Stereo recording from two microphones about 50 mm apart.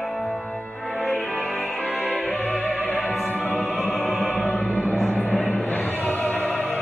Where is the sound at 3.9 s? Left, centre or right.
Left.